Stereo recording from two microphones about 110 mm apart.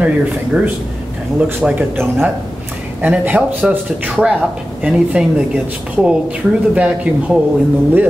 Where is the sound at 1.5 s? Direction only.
15° right (ahead or behind).